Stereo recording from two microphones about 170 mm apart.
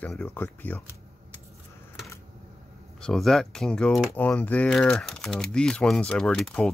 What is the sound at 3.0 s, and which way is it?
Speech, centre (ahead or behind).